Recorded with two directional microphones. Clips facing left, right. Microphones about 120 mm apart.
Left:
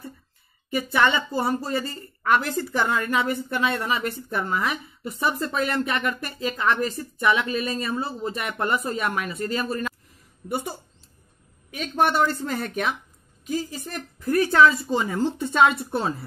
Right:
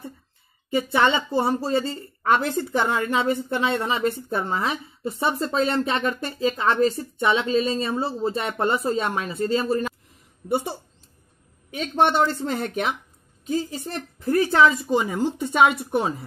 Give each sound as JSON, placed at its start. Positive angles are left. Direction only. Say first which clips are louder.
{"t": 0.7, "sound": "a woman's voice", "louder": "right 2 dB", "side_deg": -25}